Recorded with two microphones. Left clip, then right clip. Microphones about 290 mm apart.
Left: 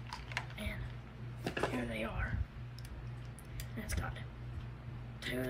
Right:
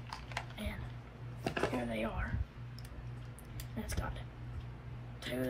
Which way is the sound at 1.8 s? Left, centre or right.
Centre.